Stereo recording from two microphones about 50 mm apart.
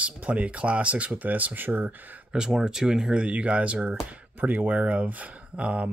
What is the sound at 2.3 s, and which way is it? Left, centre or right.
Speech, centre.